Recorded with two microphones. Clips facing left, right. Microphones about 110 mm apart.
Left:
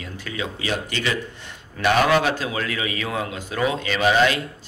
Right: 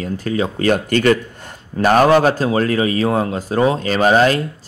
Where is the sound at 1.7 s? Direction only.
40° right (ahead or behind).